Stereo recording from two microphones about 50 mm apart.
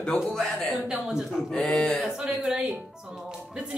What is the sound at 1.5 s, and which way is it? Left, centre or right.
Speech, centre.